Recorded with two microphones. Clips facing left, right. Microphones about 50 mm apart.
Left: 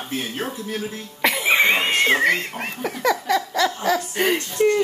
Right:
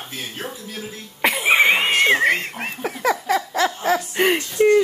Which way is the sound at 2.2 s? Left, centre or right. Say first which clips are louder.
Right 1 dB; centre.